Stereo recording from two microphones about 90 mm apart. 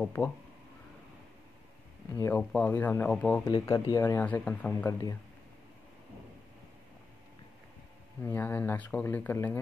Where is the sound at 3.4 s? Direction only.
40° left (ahead or behind).